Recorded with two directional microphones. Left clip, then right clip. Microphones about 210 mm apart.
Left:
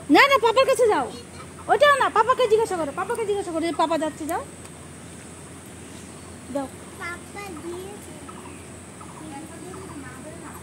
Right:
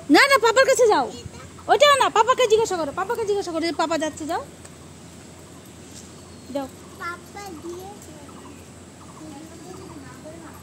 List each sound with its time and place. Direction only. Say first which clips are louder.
0.1 s speech: right 1 dB; 20° right (ahead or behind)